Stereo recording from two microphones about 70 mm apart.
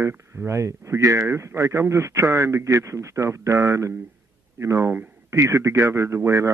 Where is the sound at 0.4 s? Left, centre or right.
Right.